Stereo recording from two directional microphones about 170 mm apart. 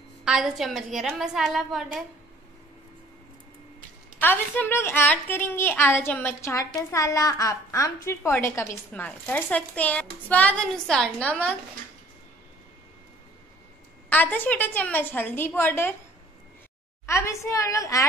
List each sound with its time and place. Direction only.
0.2 s a woman's voice: 5° right (ahead or behind)
4.2 s a woman's voice: 10° left (ahead or behind)
14.0 s a woman's voice: 10° left (ahead or behind)
17.0 s a woman's voice: 15° left (ahead or behind)